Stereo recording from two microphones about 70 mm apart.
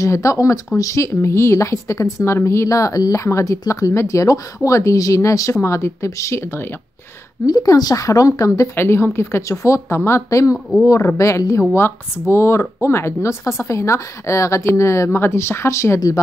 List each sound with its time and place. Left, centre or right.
0.0 s speech: left
7.4 s speech: left
8.7 s speech: left